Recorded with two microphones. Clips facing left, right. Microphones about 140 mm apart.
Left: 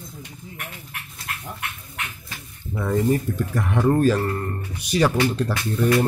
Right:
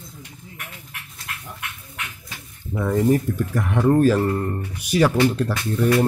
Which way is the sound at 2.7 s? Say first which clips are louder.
Right 2 dB; 10° right (ahead or behind).